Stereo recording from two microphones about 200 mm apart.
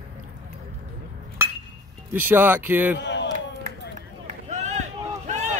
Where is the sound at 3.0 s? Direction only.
60° left (ahead or behind).